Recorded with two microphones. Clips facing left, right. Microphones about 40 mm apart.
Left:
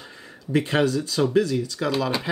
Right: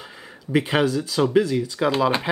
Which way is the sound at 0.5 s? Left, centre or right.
Centre.